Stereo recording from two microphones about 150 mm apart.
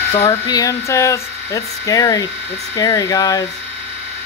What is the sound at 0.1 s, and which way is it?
Speech, 40° left (ahead or behind).